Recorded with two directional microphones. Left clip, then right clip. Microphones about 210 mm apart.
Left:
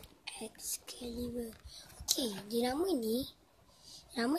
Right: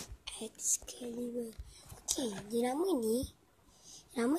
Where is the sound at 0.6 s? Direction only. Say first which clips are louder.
Right 7 dB; 25° left (ahead or behind).